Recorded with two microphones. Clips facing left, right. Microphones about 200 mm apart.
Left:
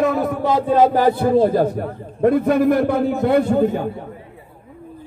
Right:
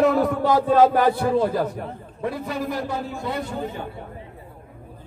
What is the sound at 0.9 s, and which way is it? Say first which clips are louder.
Speech: left 4 dB; 35° left (ahead or behind).